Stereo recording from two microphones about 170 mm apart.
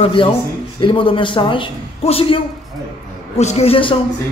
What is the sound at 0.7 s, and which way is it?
Speech, 30° left (ahead or behind).